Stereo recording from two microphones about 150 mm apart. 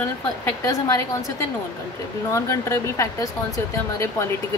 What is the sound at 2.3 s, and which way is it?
Speech, 20° left (ahead or behind).